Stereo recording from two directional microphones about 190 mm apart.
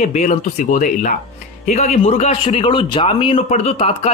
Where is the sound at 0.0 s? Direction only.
40° left (ahead or behind).